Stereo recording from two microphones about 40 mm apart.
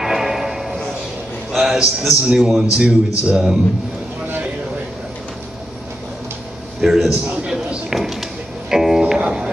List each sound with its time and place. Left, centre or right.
0.0 s music: centre
1.5 s a man's voice: centre
2.6 s a man's voice: right
6.8 s a man's voice: centre
7.9 s music: centre